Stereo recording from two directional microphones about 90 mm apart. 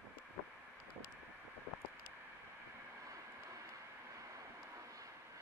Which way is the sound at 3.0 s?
35° right (ahead or behind).